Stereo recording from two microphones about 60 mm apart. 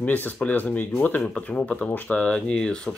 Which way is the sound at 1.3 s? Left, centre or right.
Centre.